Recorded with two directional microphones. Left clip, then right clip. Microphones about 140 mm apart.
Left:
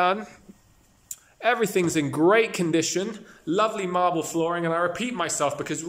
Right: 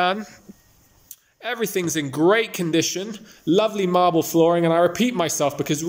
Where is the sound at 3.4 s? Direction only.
20° right (ahead or behind).